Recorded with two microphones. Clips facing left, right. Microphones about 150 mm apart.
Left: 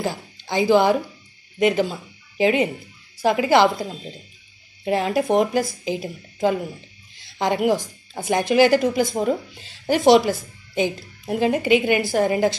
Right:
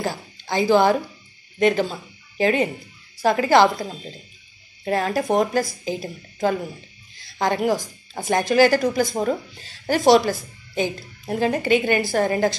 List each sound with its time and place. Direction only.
0.0 s a woman's voice: 15° left (ahead or behind)